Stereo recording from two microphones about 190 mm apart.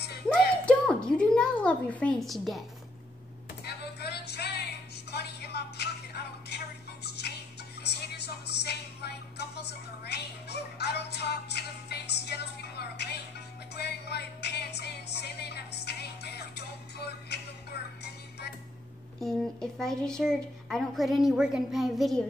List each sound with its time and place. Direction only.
0.3 s a sound: 5° left (ahead or behind)
3.6 s music: 60° left (ahead or behind)
8.5 s music: 60° left (ahead or behind)
19.2 s a woman's voice: centre (ahead or behind)